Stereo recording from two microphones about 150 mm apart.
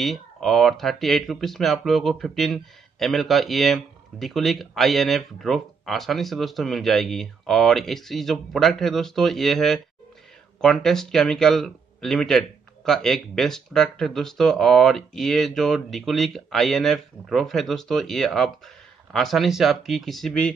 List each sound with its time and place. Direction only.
0.0 s speech: centre (ahead or behind)